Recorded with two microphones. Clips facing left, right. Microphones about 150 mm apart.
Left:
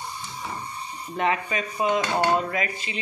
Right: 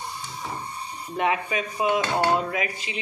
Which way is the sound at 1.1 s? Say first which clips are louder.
Even; 10° right (ahead or behind).